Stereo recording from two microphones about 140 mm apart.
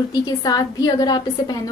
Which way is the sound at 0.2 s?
30° left (ahead or behind).